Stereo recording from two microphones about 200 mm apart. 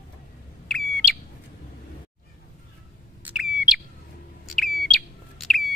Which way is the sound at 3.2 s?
5° right (ahead or behind).